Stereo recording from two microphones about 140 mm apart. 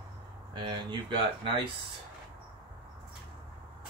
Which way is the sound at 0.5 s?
30° right (ahead or behind).